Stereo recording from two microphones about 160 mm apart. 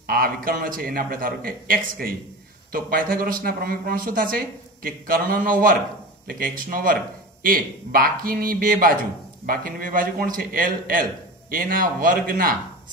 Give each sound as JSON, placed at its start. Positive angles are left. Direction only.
{"t": 0.0, "sound": "a man's voice", "side_deg": -65}